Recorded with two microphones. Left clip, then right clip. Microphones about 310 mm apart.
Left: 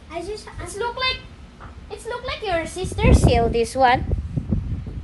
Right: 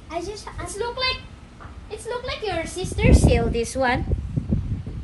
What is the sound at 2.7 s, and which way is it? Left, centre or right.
Speech, centre.